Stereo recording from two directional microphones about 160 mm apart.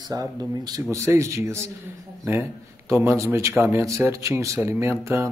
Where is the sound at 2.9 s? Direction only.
15° right (ahead or behind).